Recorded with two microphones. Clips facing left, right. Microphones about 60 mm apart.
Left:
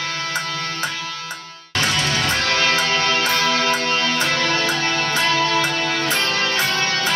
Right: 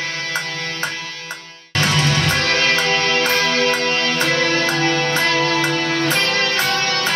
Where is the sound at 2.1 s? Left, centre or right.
Right.